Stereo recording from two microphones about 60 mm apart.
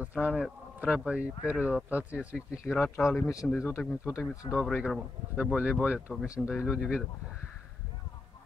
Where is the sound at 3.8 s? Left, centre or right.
Left.